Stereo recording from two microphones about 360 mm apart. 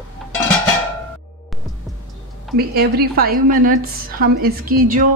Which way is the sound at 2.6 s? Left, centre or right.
Right.